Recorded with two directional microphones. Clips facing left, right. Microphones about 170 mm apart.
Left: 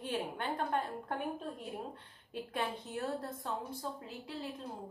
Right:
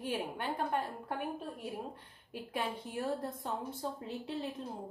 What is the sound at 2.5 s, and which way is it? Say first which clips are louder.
A woman's voice: right 1 dB; 10° right (ahead or behind).